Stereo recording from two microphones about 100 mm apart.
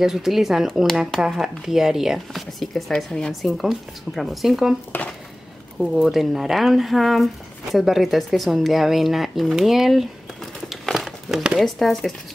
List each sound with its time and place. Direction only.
0.0 s speech: 5° right (ahead or behind)
5.8 s speech: 5° right (ahead or behind)